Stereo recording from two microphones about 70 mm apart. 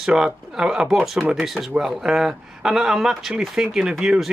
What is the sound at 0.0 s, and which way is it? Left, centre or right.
Speech, centre.